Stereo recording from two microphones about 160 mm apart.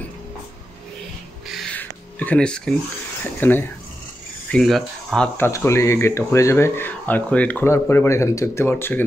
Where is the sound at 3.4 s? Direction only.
10° left (ahead or behind).